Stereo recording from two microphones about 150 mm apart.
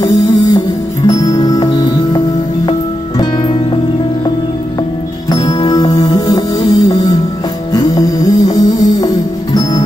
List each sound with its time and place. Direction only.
0.0 s music: 25° left (ahead or behind)
5.3 s music: 25° left (ahead or behind)